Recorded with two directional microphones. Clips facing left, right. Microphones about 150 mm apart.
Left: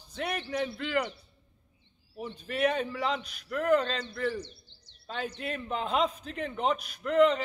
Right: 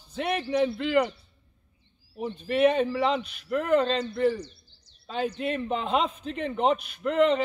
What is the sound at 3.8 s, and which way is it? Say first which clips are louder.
Speech: right 8 dB; 30° right (ahead or behind).